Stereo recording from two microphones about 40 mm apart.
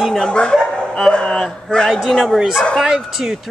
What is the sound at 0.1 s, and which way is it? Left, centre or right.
Speech, left.